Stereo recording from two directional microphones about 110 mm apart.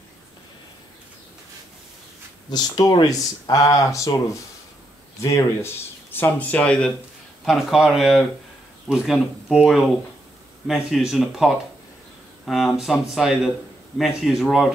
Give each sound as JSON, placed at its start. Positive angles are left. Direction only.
{"t": 2.5, "sound": "speech", "side_deg": 40}
{"t": 6.1, "sound": "speech", "side_deg": 15}
{"t": 7.4, "sound": "speech", "side_deg": 0}